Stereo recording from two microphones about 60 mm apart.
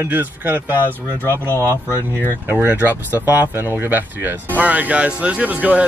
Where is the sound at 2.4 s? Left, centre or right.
Right.